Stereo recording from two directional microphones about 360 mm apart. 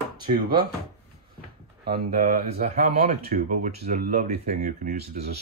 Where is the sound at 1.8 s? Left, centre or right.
Right.